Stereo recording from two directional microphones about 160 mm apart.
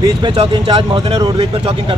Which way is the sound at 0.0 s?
30° right (ahead or behind).